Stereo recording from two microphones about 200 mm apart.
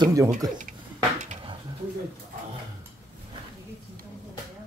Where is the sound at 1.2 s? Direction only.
30° right (ahead or behind).